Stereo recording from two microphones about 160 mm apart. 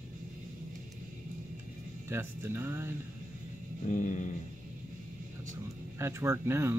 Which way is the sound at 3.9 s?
50° left (ahead or behind).